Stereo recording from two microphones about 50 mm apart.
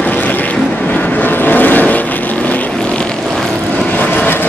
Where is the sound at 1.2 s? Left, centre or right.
Left.